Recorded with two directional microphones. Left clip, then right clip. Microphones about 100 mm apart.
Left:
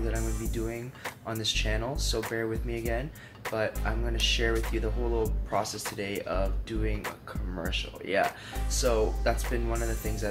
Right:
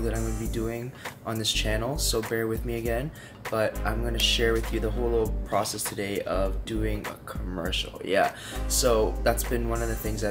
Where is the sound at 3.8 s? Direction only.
15° right (ahead or behind).